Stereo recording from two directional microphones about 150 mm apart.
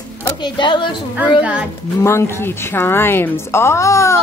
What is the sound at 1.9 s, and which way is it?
A woman's voice, 20° left (ahead or behind).